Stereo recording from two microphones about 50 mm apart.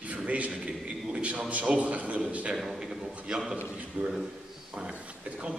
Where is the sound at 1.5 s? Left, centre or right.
Right.